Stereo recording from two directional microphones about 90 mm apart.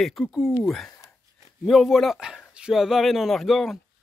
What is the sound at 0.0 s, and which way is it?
Speech, centre (ahead or behind).